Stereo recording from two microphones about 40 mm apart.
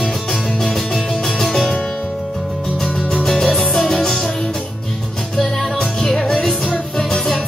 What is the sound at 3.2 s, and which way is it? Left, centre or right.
Music, centre.